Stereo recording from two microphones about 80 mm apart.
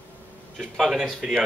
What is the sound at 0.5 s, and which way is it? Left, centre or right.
Speech, centre.